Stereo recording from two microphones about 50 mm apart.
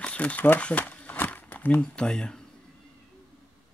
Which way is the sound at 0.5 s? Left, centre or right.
Left.